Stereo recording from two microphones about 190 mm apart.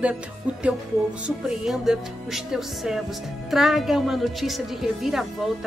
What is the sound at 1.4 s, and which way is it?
A woman's voice, centre (ahead or behind).